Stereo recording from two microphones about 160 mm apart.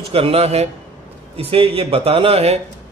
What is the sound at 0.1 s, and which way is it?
A man's voice, 40° right (ahead or behind).